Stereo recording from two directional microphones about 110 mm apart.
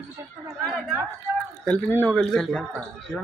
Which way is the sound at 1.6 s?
15° left (ahead or behind).